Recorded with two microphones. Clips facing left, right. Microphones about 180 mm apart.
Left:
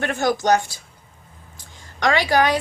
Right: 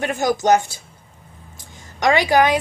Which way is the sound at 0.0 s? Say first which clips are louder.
Right 1 dB; 20° right (ahead or behind).